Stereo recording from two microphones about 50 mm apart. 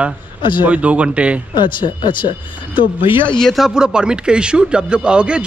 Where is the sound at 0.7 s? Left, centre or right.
Right.